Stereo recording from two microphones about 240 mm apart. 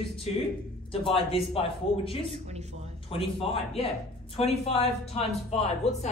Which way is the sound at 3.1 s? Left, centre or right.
Left.